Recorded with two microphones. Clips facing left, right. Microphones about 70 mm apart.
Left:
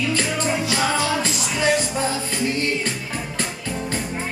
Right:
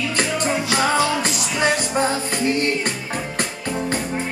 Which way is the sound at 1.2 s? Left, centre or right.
Right.